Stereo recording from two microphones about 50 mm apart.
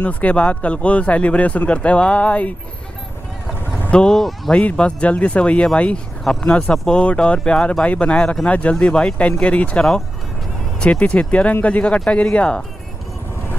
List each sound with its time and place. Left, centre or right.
0.0 s speech: left
4.1 s speech: centre
4.5 s speech: centre